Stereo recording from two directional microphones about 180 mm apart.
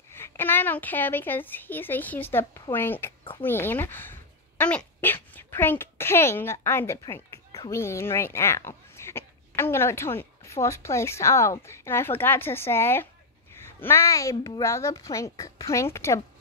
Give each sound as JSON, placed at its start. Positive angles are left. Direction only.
{"t": 0.1, "sound": "a woman's voice", "side_deg": 10}